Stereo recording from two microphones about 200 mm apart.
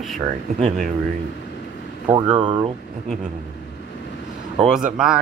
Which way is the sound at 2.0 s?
25° right (ahead or behind).